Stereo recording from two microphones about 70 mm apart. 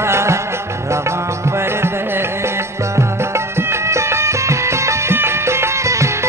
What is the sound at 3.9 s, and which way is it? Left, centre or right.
Music, right.